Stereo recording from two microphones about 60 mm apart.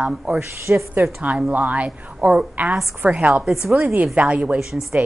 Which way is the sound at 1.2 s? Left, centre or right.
Right.